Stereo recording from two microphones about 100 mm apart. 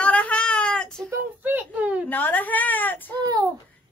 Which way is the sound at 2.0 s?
20° left (ahead or behind).